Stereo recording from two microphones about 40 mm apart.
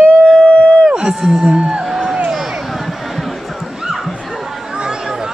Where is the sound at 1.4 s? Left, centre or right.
Right.